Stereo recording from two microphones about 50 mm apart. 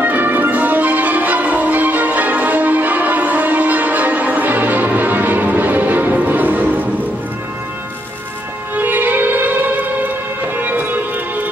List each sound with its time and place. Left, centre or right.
0.0 s music: right
8.7 s music: right